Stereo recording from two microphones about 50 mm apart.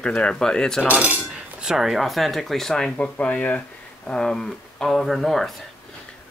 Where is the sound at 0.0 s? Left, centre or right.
Centre.